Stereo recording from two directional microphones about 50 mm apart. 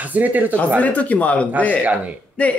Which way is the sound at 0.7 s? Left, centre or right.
Left.